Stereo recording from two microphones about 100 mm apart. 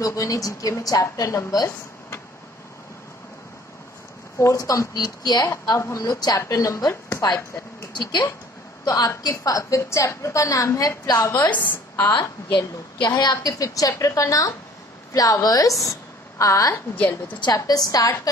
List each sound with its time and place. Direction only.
0.0 s a woman's voice: 35° left (ahead or behind)
4.4 s a woman's voice: 35° left (ahead or behind)
5.5 s a woman's voice: 30° left (ahead or behind)
7.2 s a woman's voice: 40° left (ahead or behind)
8.8 s a woman's voice: 35° left (ahead or behind)
11.7 s a woman's voice: 20° left (ahead or behind)
12.5 s a woman's voice: 45° left (ahead or behind)
16.7 s a woman's voice: 20° left (ahead or behind)
17.6 s a woman's voice: 40° left (ahead or behind)